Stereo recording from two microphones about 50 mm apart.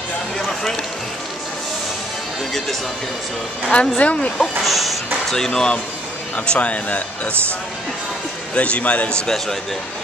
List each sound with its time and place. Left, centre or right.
0.4 s a sound: centre
3.7 s speech: centre
4.0 s speech: left
4.6 s a sound: centre
5.3 s speech: centre
8.5 s speech: left
9.2 s speech: centre